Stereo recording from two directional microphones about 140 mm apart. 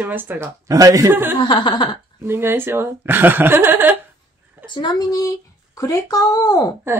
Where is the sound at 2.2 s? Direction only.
15° right (ahead or behind).